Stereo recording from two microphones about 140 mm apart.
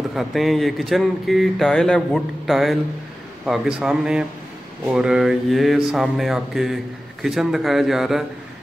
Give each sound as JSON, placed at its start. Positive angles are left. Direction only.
{"t": 0.1, "sound": "speech", "side_deg": 0}